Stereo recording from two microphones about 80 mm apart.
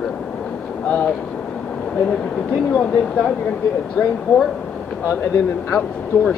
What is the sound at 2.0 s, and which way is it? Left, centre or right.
Speech, centre.